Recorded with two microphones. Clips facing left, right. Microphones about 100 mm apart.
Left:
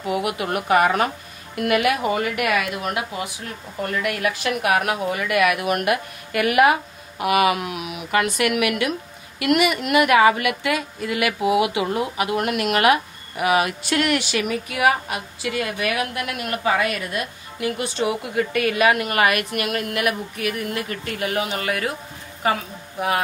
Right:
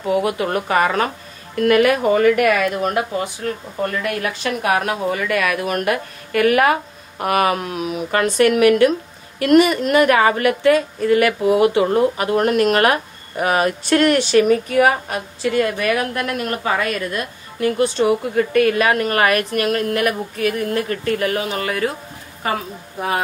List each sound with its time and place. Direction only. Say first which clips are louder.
0.2 s a woman's voice: right 4 dB; 35° right (ahead or behind)